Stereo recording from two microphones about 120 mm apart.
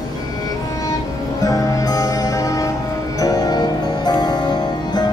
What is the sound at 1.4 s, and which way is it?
Music, 30° left (ahead or behind).